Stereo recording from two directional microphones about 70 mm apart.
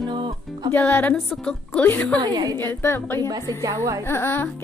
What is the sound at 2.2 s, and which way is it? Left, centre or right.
Speech, right.